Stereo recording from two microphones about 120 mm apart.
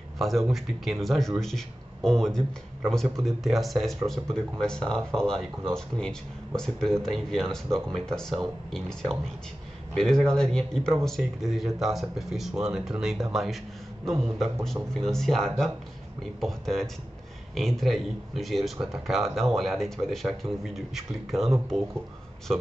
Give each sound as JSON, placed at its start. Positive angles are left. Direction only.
{"t": 0.2, "sound": "speech", "side_deg": 0}